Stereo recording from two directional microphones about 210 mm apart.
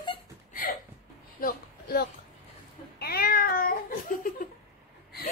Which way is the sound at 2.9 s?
45° left (ahead or behind).